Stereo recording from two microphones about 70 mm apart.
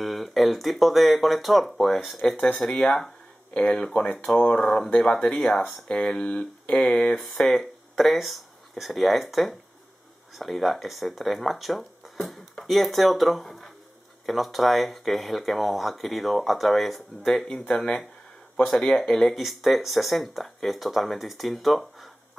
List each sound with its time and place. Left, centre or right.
0.0 s speech: centre